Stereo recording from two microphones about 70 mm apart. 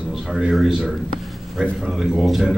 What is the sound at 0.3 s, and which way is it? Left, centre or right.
A man's voice, centre.